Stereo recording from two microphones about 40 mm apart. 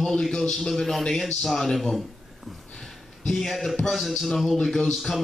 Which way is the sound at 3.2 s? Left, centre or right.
Centre.